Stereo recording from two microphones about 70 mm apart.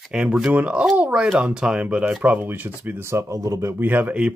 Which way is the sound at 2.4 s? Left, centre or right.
Right.